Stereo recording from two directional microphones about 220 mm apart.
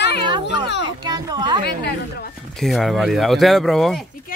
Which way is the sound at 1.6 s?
45° left (ahead or behind).